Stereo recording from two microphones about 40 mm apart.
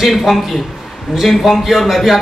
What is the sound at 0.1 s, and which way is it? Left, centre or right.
A man's voice, centre.